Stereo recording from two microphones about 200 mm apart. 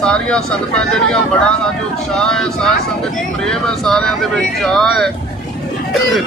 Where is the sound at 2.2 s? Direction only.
5° left (ahead or behind).